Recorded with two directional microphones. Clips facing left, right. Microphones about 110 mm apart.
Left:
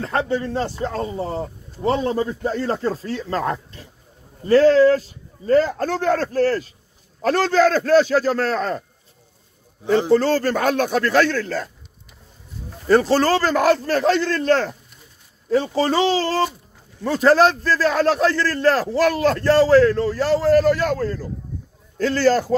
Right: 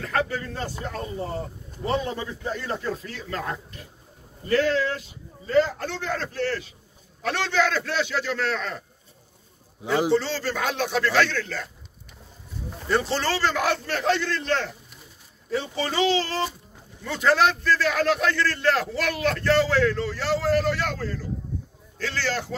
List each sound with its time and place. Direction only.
0.0 s a man's voice: 30° left (ahead or behind)
10.1 s speech: 50° left (ahead or behind)
12.8 s a man's voice: 40° left (ahead or behind)